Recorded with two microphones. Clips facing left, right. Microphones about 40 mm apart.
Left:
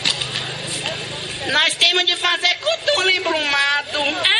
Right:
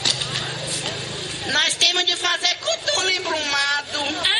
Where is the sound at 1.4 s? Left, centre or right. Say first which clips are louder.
Left 3 dB; centre.